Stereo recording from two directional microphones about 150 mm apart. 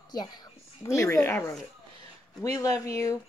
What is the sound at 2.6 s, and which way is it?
Speech, 25° left (ahead or behind).